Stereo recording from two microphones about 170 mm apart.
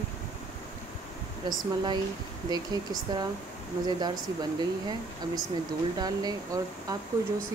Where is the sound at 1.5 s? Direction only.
25° right (ahead or behind).